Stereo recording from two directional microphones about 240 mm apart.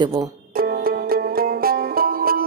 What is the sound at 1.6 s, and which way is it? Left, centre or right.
Music, right.